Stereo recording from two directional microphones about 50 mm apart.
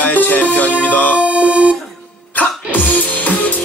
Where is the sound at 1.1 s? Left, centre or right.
Right.